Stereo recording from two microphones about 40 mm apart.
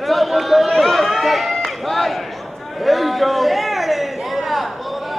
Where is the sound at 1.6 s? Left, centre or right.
Centre.